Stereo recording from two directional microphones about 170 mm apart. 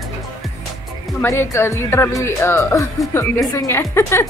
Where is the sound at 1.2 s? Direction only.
15° left (ahead or behind).